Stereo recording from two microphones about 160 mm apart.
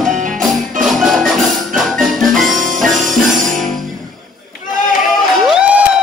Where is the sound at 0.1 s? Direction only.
55° right (ahead or behind).